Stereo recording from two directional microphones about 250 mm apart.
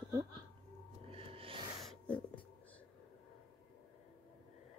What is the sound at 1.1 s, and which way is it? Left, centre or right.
Music, right.